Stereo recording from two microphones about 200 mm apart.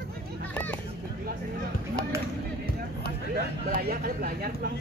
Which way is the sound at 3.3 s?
50° right (ahead or behind).